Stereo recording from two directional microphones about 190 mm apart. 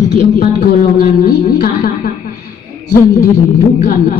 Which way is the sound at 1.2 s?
45° left (ahead or behind).